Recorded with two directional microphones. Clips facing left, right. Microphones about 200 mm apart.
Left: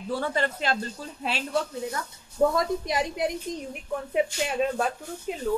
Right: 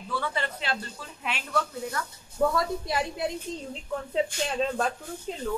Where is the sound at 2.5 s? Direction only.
20° left (ahead or behind).